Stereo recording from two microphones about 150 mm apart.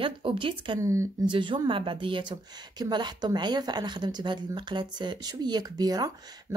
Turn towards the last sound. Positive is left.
turn(degrees=-25)  # may be behind; listen again after turning